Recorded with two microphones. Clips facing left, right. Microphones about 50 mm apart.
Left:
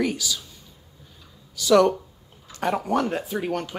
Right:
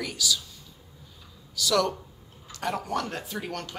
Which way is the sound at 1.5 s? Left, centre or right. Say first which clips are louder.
Left 8 dB; left.